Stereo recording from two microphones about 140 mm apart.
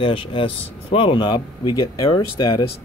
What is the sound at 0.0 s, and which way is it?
Speech, 40° left (ahead or behind).